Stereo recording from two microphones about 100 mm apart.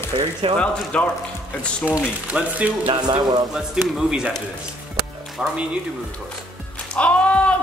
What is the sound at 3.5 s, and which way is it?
Speech, 10° right (ahead or behind).